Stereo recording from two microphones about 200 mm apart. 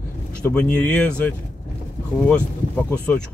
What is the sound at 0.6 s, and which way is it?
Speech, 5° left (ahead or behind).